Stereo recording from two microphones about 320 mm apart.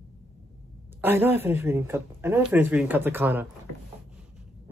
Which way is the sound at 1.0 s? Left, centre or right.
Centre.